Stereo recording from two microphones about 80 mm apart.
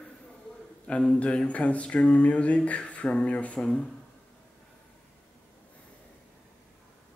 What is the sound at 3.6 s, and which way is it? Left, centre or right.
Speech, centre.